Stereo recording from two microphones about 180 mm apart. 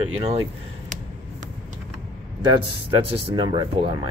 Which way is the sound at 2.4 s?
25° right (ahead or behind).